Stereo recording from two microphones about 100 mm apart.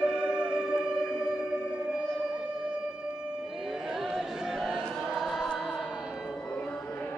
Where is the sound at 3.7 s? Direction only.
5° right (ahead or behind).